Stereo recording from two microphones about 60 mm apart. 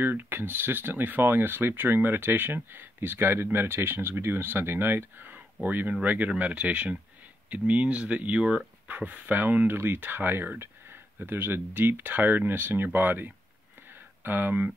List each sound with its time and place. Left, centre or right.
0.0 s speech: right